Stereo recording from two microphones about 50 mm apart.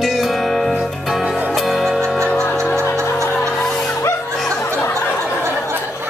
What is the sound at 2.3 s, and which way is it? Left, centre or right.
Music, left.